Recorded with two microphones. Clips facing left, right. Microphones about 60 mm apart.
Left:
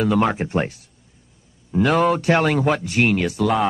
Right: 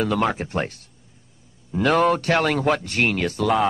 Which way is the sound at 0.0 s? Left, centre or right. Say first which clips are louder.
Left 3 dB; centre.